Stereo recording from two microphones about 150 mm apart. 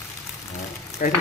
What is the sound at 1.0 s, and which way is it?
Speech, 65° left (ahead or behind).